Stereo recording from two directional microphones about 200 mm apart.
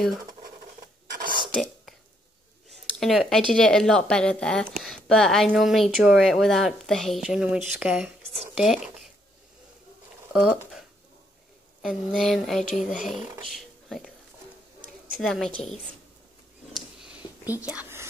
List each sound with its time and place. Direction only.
1.2 s whispering: 25° right (ahead or behind)
1.5 s whispering: centre (ahead or behind)
2.7 s speech: centre (ahead or behind)
11.8 s speech: centre (ahead or behind)
15.1 s speech: centre (ahead or behind)
16.7 s whispering: 5° right (ahead or behind)